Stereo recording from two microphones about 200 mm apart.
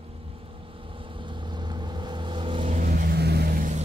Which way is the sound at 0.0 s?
30° right (ahead or behind).